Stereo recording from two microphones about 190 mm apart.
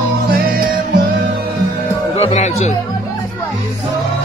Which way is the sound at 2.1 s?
35° left (ahead or behind).